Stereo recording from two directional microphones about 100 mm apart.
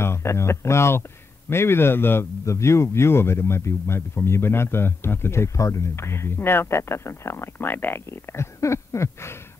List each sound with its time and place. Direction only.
0.0 s a man's voice: 25° left (ahead or behind)